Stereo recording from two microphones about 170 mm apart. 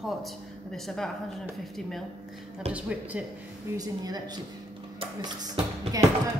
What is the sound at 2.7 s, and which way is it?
Speech, 5° right (ahead or behind).